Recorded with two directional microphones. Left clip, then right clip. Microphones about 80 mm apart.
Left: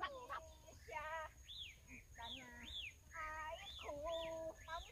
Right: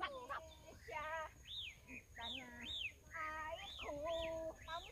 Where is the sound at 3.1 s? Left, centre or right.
Centre.